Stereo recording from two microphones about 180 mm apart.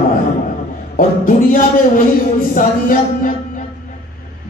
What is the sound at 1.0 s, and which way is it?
Speech, 50° left (ahead or behind).